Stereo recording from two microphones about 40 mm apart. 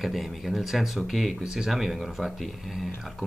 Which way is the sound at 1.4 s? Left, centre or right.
Centre.